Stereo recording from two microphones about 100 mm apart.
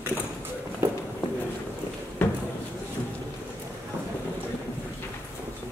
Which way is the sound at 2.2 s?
20° left (ahead or behind).